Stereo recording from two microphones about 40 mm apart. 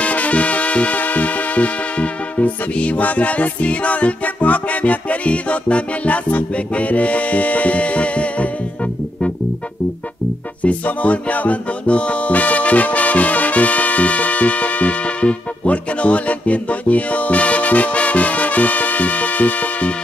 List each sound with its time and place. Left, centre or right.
0.0 s music: left
10.6 s music: left